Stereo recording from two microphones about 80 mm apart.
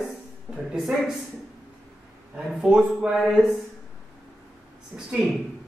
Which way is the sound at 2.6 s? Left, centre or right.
Centre.